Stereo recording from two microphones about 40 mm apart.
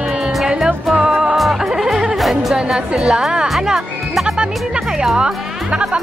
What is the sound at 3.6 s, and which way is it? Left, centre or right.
Speech, centre.